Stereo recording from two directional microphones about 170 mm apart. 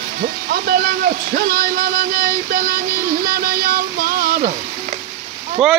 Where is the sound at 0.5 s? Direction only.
60° right (ahead or behind).